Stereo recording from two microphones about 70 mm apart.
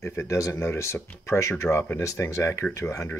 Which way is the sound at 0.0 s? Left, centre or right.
Left.